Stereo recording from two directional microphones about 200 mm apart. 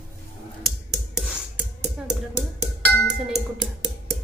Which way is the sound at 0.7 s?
Centre (ahead or behind).